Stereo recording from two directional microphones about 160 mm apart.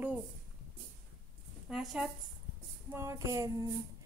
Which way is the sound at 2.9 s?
15° right (ahead or behind).